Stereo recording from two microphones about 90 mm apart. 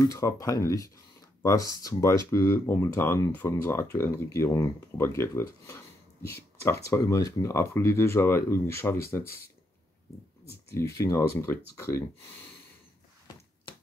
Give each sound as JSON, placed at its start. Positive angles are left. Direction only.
{"t": 0.0, "sound": "speech", "side_deg": 40}
{"t": 10.5, "sound": "speech", "side_deg": 35}